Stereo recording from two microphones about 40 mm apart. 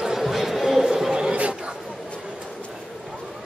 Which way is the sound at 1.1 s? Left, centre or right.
Right.